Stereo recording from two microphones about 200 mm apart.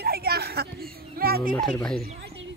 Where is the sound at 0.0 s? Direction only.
50° right (ahead or behind).